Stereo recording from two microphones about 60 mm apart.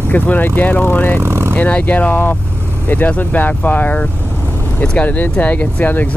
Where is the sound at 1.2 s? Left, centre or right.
Right.